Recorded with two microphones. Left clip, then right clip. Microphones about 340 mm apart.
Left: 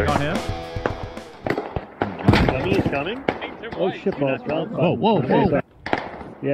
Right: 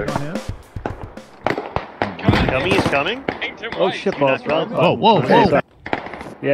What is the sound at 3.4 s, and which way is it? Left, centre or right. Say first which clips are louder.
Speech: right 5 dB; centre.